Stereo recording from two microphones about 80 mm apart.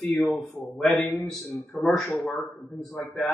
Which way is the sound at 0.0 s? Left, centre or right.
Centre.